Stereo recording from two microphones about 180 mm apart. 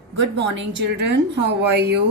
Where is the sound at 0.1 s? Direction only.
80° right.